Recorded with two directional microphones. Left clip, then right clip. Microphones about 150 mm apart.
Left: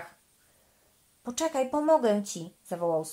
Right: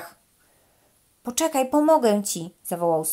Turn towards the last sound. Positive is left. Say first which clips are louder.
# right 6 dB
turn(degrees=-35)  # may be behind; listen again after turning